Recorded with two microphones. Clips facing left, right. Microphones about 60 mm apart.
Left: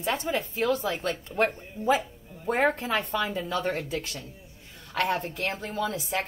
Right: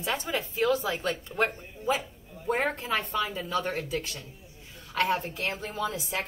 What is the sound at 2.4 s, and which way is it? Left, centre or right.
Speech, left.